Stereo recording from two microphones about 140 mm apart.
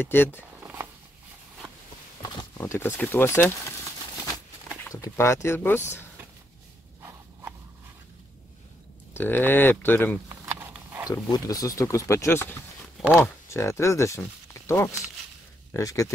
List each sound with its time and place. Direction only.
0.0 s speech: 15° left (ahead or behind)
2.5 s speech: 20° left (ahead or behind)
4.9 s speech: 20° left (ahead or behind)
9.1 s speech: 15° left (ahead or behind)
11.1 s speech: 25° left (ahead or behind)